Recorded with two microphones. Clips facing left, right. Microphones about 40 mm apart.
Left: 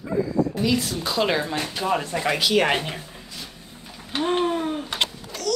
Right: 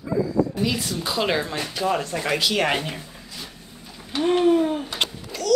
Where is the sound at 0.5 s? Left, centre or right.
Centre.